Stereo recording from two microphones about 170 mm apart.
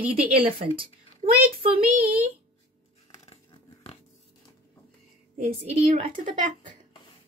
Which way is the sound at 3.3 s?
35° left (ahead or behind).